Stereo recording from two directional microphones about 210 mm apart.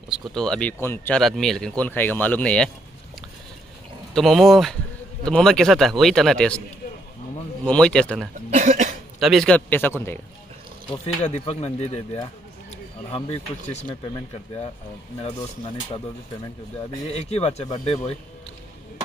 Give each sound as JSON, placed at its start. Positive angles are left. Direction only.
{"t": 0.1, "sound": "speech", "side_deg": 0}
{"t": 4.1, "sound": "speech", "side_deg": 0}
{"t": 7.6, "sound": "speech", "side_deg": 5}
{"t": 8.5, "sound": "cough", "side_deg": -35}
{"t": 9.2, "sound": "speech", "side_deg": 0}
{"t": 11.2, "sound": "speech", "side_deg": 30}
{"t": 17.1, "sound": "speech", "side_deg": 30}